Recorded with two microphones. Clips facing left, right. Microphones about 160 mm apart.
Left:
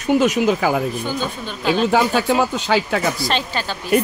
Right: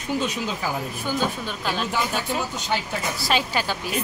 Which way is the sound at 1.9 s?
90° left.